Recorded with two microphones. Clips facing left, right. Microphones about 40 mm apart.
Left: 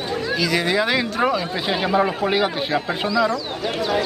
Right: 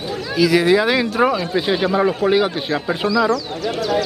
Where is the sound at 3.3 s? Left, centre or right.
Left.